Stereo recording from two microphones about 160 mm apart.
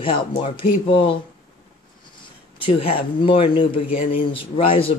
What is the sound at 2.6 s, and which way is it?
Speech, 35° left (ahead or behind).